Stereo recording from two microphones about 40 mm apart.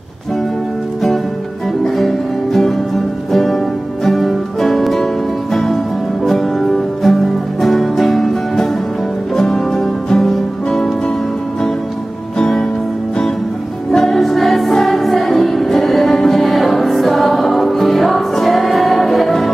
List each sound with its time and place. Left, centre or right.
2.0 s music: centre
12.4 s music: centre
13.9 s music: centre